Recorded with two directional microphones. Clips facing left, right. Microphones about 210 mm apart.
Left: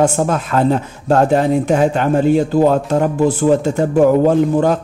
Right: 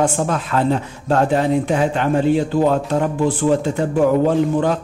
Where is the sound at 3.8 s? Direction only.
45° left (ahead or behind).